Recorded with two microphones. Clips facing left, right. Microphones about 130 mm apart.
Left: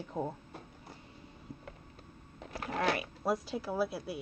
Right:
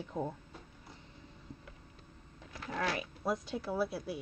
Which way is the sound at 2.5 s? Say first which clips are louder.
Left 4 dB; 60° left (ahead or behind).